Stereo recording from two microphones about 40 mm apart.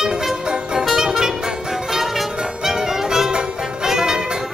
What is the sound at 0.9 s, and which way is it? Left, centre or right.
Music, centre.